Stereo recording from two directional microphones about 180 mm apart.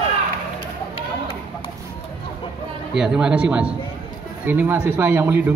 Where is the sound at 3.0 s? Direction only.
5° right (ahead or behind).